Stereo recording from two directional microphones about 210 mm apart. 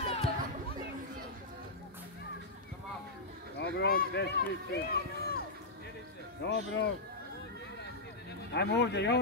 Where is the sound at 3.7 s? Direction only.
50° left (ahead or behind).